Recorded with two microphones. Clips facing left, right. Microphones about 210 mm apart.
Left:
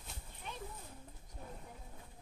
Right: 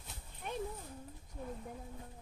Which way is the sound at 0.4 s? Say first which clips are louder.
Right 7 dB; 55° right (ahead or behind).